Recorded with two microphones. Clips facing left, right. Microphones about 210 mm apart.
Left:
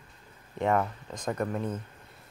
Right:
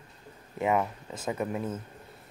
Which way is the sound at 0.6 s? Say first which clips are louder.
Even; 5° right (ahead or behind).